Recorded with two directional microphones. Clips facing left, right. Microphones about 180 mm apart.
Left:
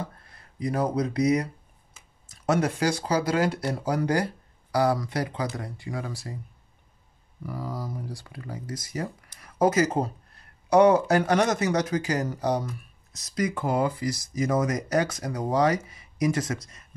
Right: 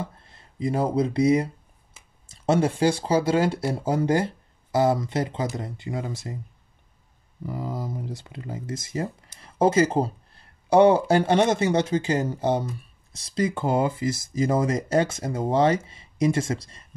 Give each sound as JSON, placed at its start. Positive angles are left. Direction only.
{"t": 0.2, "sound": "speech", "side_deg": -25}
{"t": 7.4, "sound": "speech", "side_deg": -25}